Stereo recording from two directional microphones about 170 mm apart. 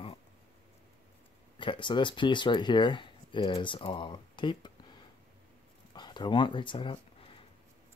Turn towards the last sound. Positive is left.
turn(degrees=30)  # may be behind; listen again after turning